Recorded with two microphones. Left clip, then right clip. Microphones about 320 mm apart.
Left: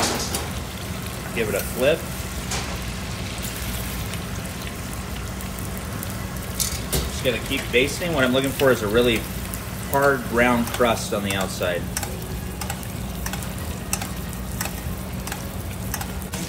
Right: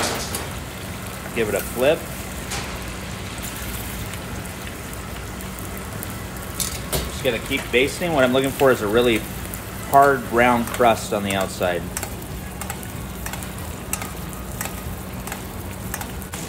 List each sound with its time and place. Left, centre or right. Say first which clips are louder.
1.3 s speech: right 2 dB; right
7.2 s speech: right 2 dB; right